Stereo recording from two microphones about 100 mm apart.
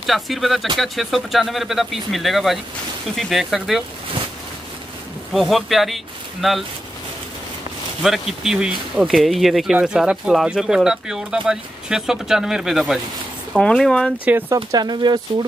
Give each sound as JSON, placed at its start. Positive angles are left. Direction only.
{"t": 0.0, "sound": "speech", "side_deg": 0}
{"t": 5.3, "sound": "speech", "side_deg": 0}
{"t": 8.0, "sound": "speech", "side_deg": -5}
{"t": 14.5, "sound": "speech", "side_deg": -40}